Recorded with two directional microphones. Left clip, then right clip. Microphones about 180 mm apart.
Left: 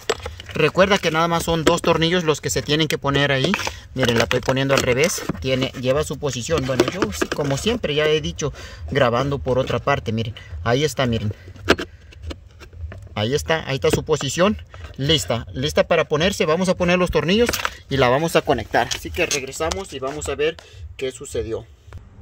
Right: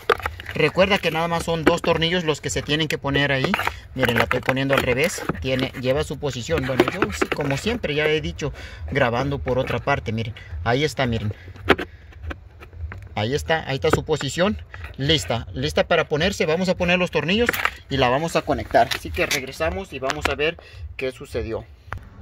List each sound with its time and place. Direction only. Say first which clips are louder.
0.6 s speech: left 2 dB; 25° left (ahead or behind)
13.1 s speech: left 1 dB; 20° left (ahead or behind)
19.1 s speech: left 2 dB; 5° left (ahead or behind)